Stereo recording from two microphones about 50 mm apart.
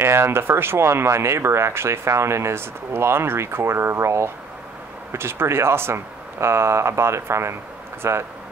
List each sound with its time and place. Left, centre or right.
0.0 s speech: right